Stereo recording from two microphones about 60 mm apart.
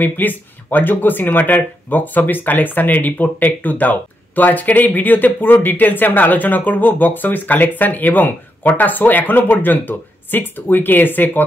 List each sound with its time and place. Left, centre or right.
0.0 s speech: left